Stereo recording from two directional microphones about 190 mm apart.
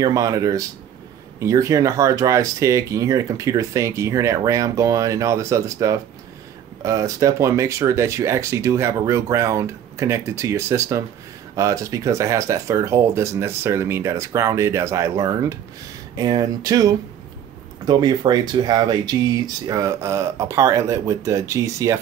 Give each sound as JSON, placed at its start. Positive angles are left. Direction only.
{"t": 0.0, "sound": "speech", "side_deg": -20}